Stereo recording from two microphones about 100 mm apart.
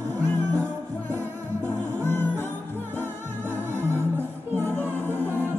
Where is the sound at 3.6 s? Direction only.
25° right (ahead or behind).